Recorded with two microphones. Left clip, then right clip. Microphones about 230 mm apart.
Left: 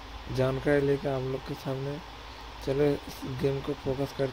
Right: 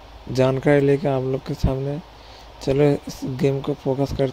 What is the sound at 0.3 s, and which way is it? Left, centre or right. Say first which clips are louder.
Speech: right 9 dB; right.